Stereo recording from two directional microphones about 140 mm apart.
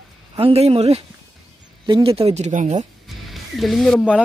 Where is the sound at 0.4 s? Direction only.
45° right (ahead or behind).